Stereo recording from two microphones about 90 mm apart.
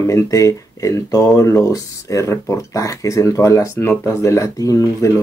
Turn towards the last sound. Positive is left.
turn(degrees=40)  # may be behind; listen again after turning